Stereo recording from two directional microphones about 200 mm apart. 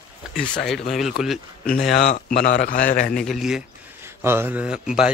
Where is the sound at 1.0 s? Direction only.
Centre (ahead or behind).